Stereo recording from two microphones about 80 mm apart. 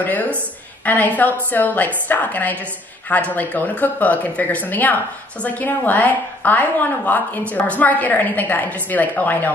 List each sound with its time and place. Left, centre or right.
0.0 s a woman's voice: left